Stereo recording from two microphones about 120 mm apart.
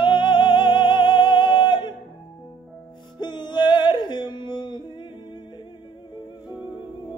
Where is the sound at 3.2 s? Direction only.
40° left (ahead or behind).